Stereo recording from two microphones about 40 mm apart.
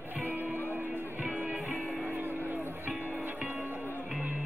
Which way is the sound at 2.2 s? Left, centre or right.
Right.